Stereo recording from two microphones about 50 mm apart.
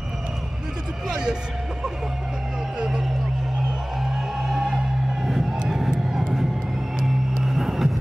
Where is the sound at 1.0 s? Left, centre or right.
Centre.